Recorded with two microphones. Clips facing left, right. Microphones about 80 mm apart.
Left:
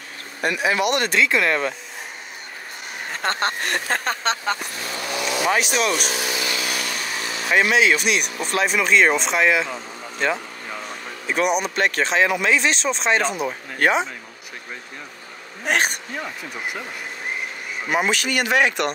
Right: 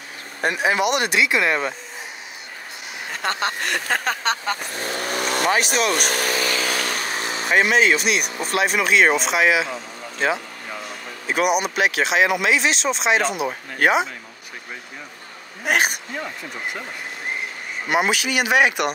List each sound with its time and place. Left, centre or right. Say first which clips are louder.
0.4 s speech: right 1 dB; right; by 1.8 s centre
3.2 s speech: left 1 dB; left
4.3 s speech: even; right
5.5 s speech: even; centre
5.9 s vehicle: right 3 dB; right
7.4 s speech: even; centre
15.6 s speech: right 1 dB; centre
17.8 s speech: right 1 dB; centre